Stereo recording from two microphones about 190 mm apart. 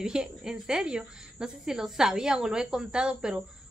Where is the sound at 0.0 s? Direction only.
5° right (ahead or behind).